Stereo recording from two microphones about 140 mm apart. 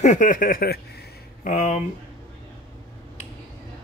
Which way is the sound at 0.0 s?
65° left (ahead or behind).